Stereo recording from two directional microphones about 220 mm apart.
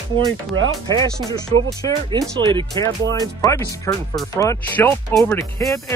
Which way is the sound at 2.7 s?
15° left (ahead or behind).